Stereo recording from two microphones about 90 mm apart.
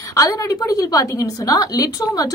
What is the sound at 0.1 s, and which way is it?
A woman's voice, 40° left (ahead or behind).